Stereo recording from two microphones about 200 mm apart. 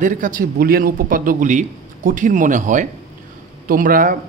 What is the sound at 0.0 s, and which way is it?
A man's voice, 40° right (ahead or behind).